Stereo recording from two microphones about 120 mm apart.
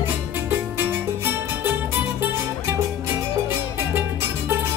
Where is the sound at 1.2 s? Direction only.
20° right (ahead or behind).